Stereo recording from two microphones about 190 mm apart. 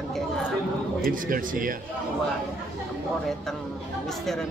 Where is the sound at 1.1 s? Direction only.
45° right (ahead or behind).